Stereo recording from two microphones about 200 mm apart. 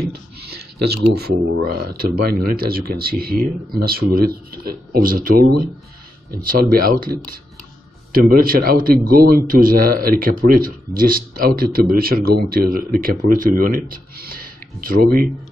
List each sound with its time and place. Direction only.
0.8 s a man's voice: 50° right (ahead or behind)